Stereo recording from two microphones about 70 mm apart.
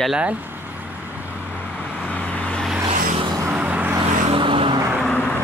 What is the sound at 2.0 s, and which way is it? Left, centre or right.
Vehicle, centre.